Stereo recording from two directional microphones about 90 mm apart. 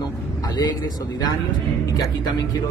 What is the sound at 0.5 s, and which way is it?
Speech, 50° left (ahead or behind).